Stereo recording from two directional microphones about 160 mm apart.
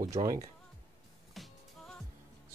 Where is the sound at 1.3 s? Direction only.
Centre (ahead or behind).